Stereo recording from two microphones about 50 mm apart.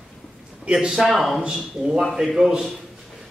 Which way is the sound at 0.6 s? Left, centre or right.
Centre.